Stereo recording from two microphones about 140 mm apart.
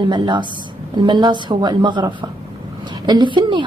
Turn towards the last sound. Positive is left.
turn(degrees=-35)  # may be behind; listen again after turning